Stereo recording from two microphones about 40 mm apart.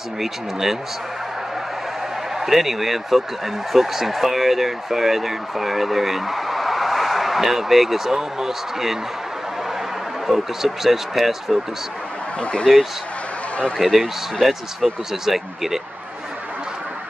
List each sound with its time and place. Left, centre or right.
0.2 s speech: centre
2.4 s speech: centre
10.2 s speech: centre
12.4 s speech: left
13.7 s speech: centre